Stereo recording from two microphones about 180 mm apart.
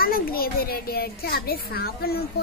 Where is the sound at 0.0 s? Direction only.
55° left (ahead or behind).